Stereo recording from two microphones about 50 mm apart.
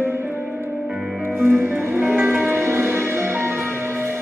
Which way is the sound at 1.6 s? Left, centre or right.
Right.